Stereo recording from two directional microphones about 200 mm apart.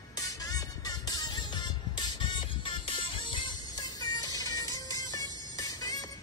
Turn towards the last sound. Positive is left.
turn(degrees=20)  # may be behind; listen again after turning